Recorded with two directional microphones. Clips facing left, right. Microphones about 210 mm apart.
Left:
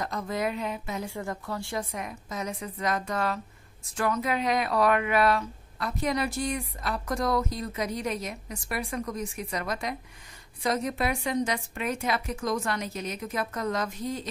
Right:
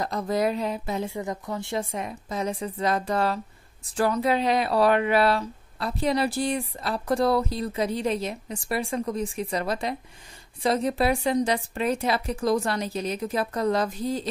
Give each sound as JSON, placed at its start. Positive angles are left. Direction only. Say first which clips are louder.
{"t": 0.0, "sound": "speech", "louder": "right 5 dB", "side_deg": -35}
{"t": 1.0, "sound": "a woman's voice", "louder": "right 3 dB", "side_deg": -20}